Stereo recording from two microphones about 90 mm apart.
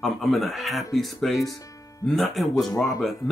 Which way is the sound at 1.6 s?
35° left (ahead or behind).